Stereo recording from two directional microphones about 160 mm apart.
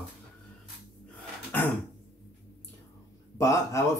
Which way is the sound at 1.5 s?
10° left (ahead or behind).